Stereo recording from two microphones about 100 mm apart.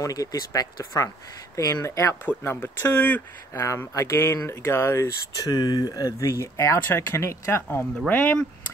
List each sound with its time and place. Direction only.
0.0 s speech: 35° left (ahead or behind); by 3.2 s 20° left (ahead or behind)
3.5 s speech: 30° left (ahead or behind)
5.5 s speech: 40° left (ahead or behind); by 8.4 s 20° left (ahead or behind)